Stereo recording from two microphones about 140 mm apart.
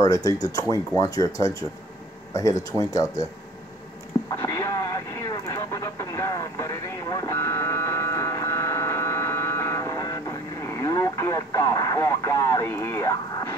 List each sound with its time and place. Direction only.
0.0 s speech: 25° left (ahead or behind)
2.8 s speech: 25° left (ahead or behind)
4.3 s radio: 20° left (ahead or behind)